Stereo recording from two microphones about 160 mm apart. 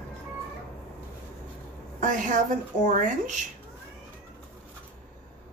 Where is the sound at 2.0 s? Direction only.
55° right (ahead or behind).